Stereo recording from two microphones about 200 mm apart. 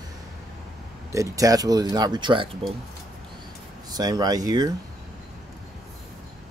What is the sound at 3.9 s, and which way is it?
Speech, 20° right (ahead or behind).